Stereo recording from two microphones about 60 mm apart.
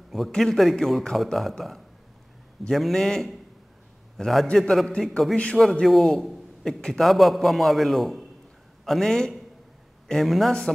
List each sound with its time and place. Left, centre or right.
0.1 s a man's voice: centre
2.7 s a man's voice: centre
5.6 s a man's voice: centre
6.2 s a sound: centre
6.7 s a man's voice: centre